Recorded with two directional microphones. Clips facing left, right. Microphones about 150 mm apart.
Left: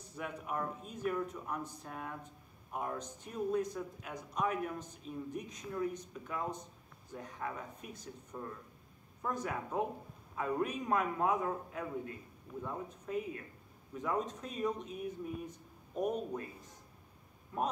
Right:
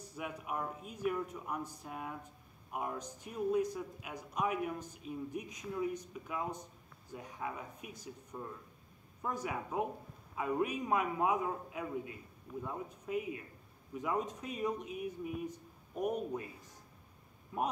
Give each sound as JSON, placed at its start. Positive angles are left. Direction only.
{"t": 0.1, "sound": "speech", "side_deg": -10}
{"t": 17.5, "sound": "speech", "side_deg": -10}